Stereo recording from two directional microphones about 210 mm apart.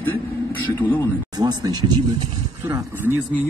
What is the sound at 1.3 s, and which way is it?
Speech, 20° right (ahead or behind).